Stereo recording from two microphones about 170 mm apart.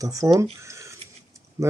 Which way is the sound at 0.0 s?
20° right (ahead or behind).